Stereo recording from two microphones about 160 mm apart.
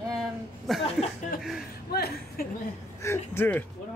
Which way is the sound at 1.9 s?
75° left (ahead or behind).